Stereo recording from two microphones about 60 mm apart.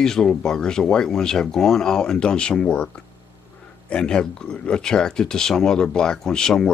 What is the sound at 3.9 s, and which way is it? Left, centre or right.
Speech, centre.